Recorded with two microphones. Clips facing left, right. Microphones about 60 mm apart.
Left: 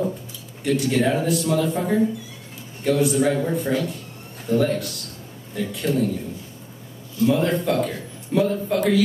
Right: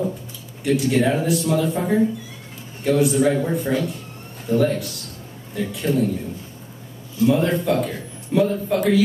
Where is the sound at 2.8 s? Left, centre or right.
Centre.